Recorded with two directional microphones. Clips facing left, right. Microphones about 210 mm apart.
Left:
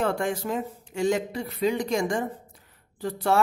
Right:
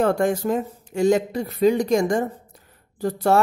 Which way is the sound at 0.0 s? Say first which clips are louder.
Right 6 dB; 45° right (ahead or behind).